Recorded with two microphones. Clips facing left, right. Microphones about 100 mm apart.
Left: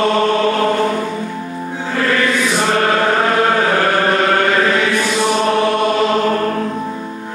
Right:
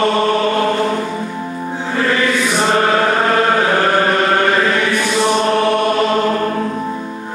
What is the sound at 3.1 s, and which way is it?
Chant, 5° left (ahead or behind).